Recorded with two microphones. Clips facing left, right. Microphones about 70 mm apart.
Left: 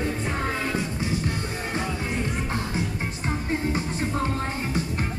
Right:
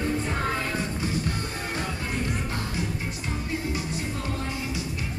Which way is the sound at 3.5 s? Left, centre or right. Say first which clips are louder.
Left 3 dB; left.